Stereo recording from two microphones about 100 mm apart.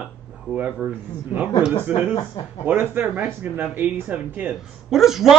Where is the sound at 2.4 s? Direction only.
45° left (ahead or behind).